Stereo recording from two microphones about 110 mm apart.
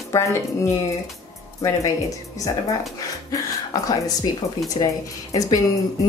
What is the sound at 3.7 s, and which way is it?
Speech, 35° left (ahead or behind).